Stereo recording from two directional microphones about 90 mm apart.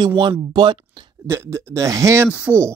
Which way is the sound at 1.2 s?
30° right (ahead or behind).